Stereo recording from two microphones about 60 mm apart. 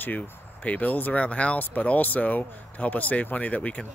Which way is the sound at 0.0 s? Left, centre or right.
Left.